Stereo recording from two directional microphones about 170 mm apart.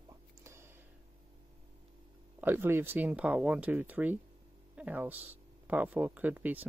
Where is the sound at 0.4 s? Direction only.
15° right (ahead or behind).